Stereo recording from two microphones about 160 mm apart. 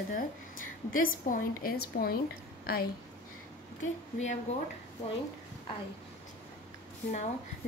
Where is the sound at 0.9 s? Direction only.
60° left (ahead or behind).